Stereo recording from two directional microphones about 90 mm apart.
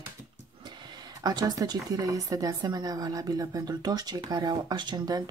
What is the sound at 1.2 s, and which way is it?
Speech, 50° right (ahead or behind).